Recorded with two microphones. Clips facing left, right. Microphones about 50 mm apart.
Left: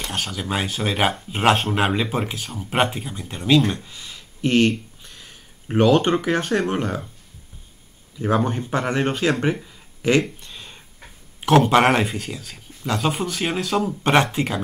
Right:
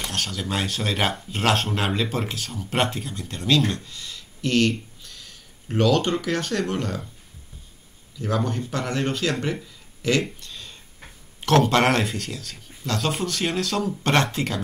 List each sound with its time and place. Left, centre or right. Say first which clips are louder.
0.1 s speech: left 3 dB; centre
8.2 s speech: left 4 dB; left
10.4 s a sound: left 1 dB; left
11.4 s speech: left 3 dB; centre